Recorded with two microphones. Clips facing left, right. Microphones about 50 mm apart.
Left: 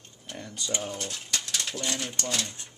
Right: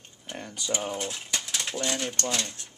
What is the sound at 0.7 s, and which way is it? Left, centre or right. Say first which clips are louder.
Speech: right 3 dB; centre.